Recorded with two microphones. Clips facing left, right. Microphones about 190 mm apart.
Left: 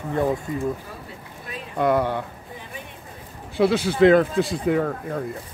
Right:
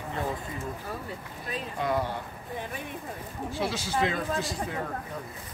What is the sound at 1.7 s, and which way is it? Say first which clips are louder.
Speech: left 9 dB; 60° left (ahead or behind).